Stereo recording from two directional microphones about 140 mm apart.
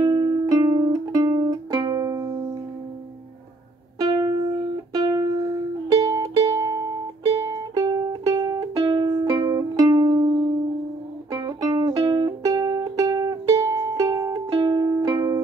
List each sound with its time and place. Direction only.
0.0 s music: 30° right (ahead or behind)
4.0 s music: 25° right (ahead or behind)